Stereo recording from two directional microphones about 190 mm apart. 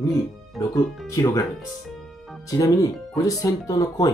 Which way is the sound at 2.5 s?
20° left (ahead or behind).